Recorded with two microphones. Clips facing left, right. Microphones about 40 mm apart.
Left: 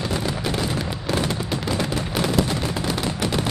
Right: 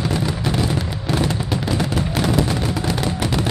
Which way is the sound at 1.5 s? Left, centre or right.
Centre.